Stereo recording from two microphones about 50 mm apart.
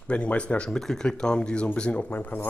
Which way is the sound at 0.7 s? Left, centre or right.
Centre.